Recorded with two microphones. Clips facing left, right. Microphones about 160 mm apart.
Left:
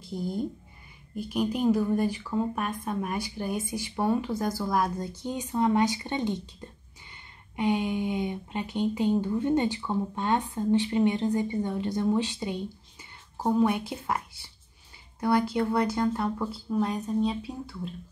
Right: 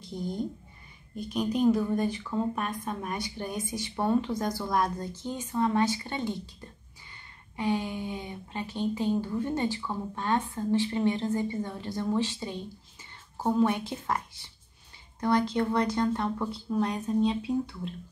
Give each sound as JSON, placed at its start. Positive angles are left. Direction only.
{"t": 0.1, "sound": "a woman's voice", "side_deg": 5}
{"t": 7.5, "sound": "a woman's voice", "side_deg": 20}